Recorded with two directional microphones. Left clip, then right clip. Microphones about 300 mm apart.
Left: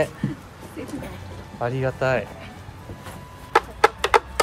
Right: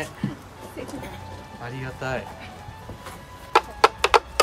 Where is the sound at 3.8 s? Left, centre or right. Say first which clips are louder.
Even; centre.